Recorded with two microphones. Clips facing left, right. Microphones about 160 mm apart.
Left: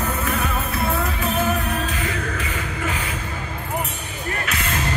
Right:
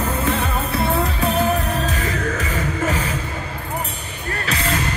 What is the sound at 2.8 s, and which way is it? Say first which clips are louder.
Music: right 4 dB; 40° right (ahead or behind).